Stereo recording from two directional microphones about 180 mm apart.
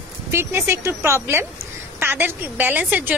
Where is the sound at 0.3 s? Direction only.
15° right (ahead or behind).